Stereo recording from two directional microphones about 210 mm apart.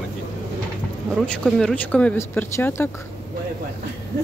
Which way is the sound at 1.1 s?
5° left (ahead or behind).